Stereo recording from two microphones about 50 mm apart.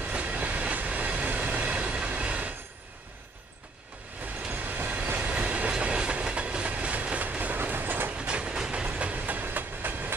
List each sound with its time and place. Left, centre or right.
0.0 s train: right
4.5 s train: right
8.1 s train: right
8.8 s train: right